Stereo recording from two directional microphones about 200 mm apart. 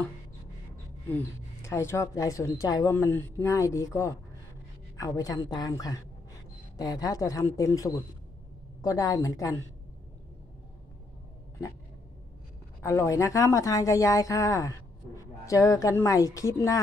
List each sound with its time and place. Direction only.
1.1 s speech: 15° left (ahead or behind)
12.8 s speech: 15° left (ahead or behind)